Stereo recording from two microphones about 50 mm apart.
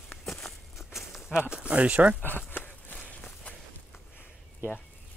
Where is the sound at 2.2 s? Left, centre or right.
Left.